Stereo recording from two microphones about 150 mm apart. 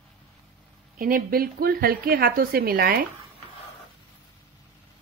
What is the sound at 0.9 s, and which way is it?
A woman's voice, 70° right (ahead or behind).